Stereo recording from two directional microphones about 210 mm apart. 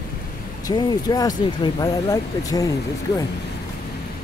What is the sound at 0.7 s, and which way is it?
Speech, 20° left (ahead or behind).